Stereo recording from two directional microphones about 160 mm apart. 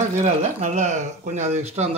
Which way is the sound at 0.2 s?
45° right (ahead or behind).